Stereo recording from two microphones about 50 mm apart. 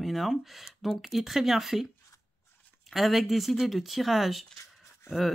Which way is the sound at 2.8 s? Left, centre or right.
Centre.